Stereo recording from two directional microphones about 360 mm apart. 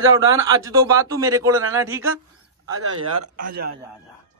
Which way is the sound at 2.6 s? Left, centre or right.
Right.